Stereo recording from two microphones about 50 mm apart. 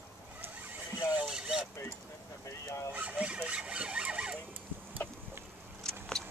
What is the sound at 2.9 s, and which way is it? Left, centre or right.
Vehicle, right.